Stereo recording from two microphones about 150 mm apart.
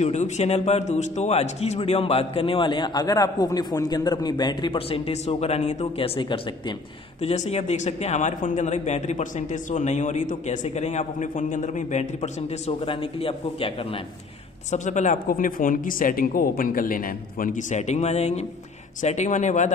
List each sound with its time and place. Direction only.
0.0 s a man's voice: 50° left (ahead or behind)
14.7 s speech: 55° left (ahead or behind)